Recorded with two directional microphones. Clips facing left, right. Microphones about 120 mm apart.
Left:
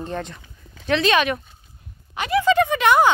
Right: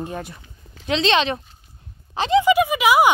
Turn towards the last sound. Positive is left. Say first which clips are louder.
# even
turn(degrees=-5)  # may be behind; listen again after turning